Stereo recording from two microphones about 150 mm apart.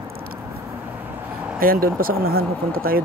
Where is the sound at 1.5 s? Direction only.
75° right (ahead or behind).